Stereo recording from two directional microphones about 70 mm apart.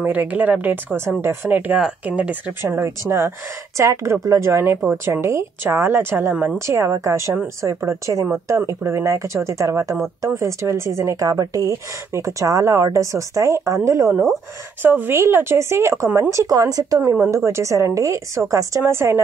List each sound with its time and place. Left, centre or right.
0.0 s a woman's voice: right
2.0 s a woman's voice: centre
2.6 s speech: right
4.9 s a woman's voice: right
11.0 s speech: right
14.8 s a woman's voice: right
17.3 s a woman's voice: right